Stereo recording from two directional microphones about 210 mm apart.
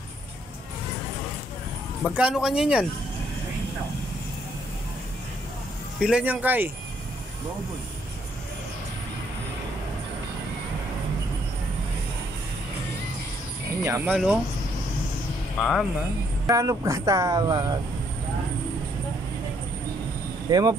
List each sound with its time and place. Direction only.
2.0 s speech: 5° right (ahead or behind)
5.9 s speech: 5° right (ahead or behind)
13.8 s speech: 10° right (ahead or behind)
15.6 s speech: centre (ahead or behind)
16.4 s speech: 15° right (ahead or behind)
20.4 s speech: 20° right (ahead or behind)